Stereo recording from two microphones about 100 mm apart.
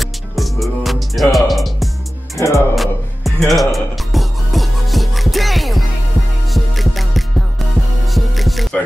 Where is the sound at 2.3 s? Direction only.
30° left (ahead or behind).